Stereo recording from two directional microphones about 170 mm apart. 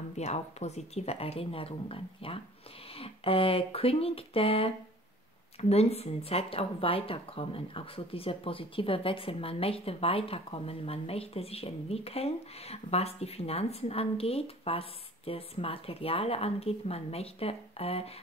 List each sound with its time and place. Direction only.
0.2 s speech: 40° left (ahead or behind)